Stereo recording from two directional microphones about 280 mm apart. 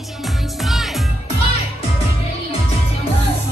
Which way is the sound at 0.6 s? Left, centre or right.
Centre.